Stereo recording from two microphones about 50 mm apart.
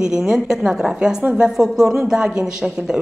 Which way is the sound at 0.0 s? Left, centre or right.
Centre.